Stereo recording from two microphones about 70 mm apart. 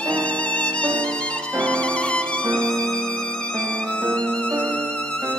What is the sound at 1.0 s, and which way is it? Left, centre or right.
Music, centre.